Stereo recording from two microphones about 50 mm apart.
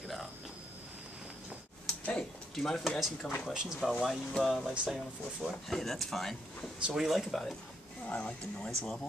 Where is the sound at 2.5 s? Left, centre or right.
Centre.